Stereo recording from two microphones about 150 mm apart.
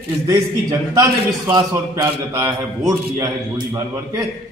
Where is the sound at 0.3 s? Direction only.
25° right (ahead or behind).